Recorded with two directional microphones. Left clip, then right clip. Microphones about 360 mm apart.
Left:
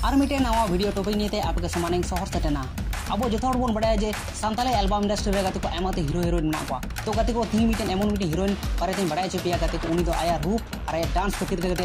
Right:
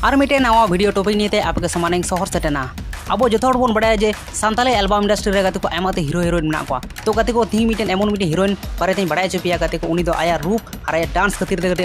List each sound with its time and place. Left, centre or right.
0.0 s speech: right